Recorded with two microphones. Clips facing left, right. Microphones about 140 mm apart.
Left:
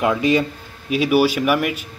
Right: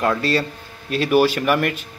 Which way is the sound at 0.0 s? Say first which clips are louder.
Left 3 dB; 15° left (ahead or behind).